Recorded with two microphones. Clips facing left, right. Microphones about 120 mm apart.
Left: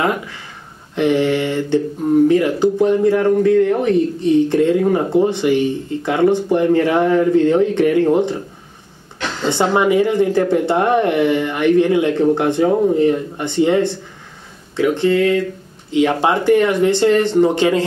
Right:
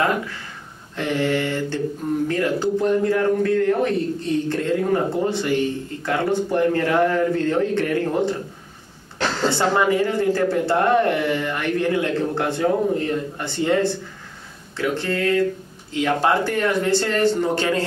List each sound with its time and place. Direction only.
0.9 s a man's voice: 20° left (ahead or behind)
9.5 s speech: 20° left (ahead or behind)
14.8 s a man's voice: 15° left (ahead or behind)